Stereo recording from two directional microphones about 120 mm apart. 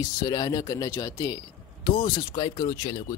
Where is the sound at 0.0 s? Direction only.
35° left (ahead or behind).